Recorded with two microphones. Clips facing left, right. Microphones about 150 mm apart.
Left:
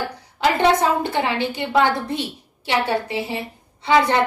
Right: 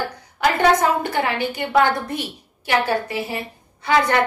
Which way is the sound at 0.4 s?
25° left (ahead or behind).